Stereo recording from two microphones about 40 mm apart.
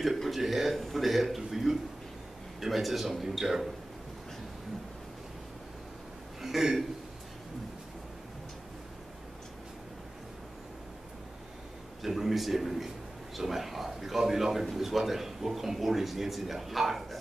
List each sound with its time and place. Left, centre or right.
0.2 s a man's voice: centre
6.4 s a man's voice: centre
12.0 s a man's voice: centre